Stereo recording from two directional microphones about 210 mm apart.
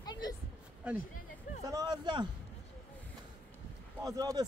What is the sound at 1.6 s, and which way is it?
Speech, 15° right (ahead or behind).